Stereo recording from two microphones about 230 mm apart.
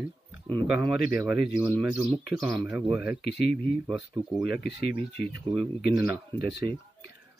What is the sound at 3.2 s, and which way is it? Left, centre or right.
Speech, left.